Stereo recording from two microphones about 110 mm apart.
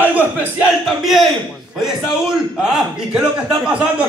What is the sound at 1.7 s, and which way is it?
A man's voice, centre (ahead or behind).